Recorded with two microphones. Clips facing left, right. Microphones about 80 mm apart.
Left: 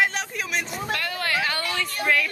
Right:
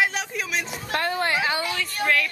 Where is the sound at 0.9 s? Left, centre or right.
Right.